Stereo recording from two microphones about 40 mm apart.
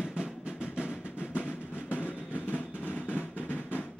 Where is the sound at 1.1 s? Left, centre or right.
Left.